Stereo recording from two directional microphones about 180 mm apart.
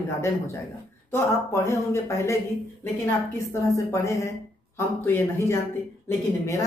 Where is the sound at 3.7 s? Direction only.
15° left (ahead or behind).